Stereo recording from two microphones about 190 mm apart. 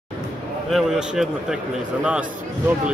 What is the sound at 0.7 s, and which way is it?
A man's voice, centre (ahead or behind).